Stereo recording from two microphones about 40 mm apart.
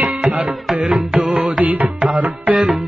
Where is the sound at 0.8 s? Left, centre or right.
Centre.